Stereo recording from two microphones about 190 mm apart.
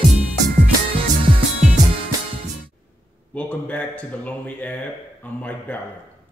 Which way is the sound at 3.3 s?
5° left (ahead or behind).